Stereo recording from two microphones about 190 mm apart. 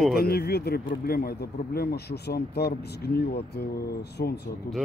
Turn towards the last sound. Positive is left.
turn(degrees=50)  # may be behind; listen again after turning